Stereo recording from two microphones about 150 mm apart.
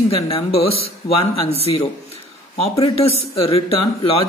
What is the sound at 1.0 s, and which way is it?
Speech, 25° left (ahead or behind).